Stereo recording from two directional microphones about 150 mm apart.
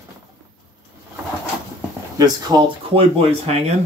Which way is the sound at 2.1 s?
25° right (ahead or behind).